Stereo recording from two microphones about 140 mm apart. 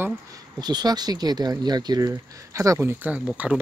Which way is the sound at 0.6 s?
30° right (ahead or behind).